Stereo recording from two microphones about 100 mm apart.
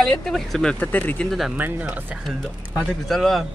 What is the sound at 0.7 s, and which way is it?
Speech, 15° left (ahead or behind).